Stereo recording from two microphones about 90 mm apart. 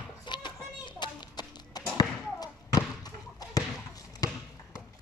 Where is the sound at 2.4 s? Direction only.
45° left (ahead or behind).